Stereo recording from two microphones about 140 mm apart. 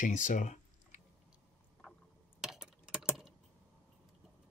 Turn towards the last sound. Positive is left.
turn(degrees=-5)  # may be behind; listen again after turning